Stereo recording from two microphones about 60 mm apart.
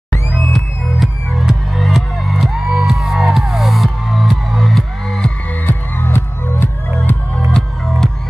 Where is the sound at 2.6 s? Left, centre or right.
Centre.